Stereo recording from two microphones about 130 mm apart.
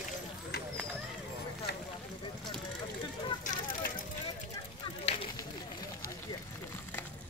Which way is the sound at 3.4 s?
90° left.